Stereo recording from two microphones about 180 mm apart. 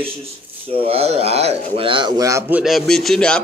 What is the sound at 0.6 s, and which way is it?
Speech, 30° right (ahead or behind).